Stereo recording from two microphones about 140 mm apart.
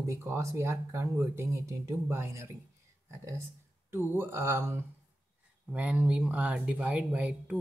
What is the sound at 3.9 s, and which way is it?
Speech, 15° right (ahead or behind).